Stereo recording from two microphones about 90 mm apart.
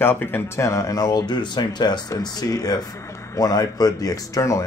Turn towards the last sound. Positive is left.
turn(degrees=35)  # may be behind; listen again after turning